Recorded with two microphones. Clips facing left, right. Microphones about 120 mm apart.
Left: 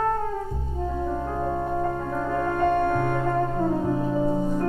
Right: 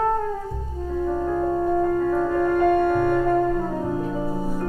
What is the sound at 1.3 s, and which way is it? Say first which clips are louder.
Music: right 5 dB; 15° left (ahead or behind).